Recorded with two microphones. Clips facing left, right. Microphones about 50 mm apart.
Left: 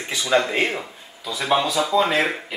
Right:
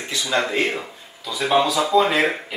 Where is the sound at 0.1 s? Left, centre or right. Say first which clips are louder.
Left 4 dB; centre.